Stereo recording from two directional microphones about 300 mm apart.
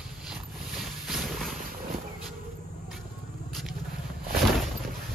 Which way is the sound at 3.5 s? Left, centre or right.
Centre.